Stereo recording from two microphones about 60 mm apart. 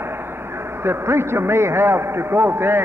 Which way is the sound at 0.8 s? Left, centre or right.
Right.